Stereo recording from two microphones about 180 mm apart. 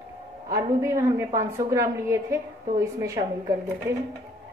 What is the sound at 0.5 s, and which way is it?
A woman's voice, 15° right (ahead or behind).